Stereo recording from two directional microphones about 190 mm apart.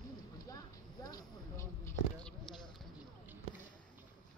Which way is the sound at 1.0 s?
15° left (ahead or behind).